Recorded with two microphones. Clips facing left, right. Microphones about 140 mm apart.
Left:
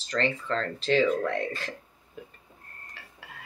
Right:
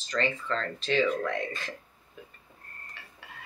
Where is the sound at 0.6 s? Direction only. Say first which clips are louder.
Left 4 dB; 70° left (ahead or behind).